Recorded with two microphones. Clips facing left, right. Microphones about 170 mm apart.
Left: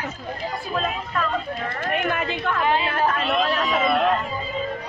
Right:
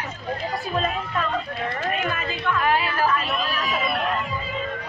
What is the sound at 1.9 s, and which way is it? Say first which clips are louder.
Speech: left 3 dB; 65° left (ahead or behind).